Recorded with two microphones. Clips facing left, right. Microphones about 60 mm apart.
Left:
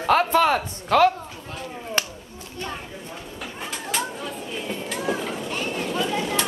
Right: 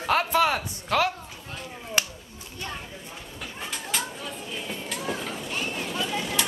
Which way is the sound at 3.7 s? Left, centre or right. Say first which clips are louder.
Left 4 dB; centre.